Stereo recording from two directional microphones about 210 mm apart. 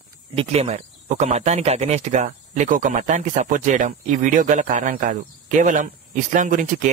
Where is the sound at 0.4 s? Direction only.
30° right (ahead or behind).